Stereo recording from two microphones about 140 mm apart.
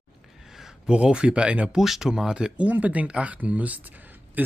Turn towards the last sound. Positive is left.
turn(degrees=-10)  # may be behind; listen again after turning